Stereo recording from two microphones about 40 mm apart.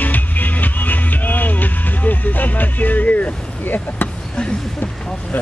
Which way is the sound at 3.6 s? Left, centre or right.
Left.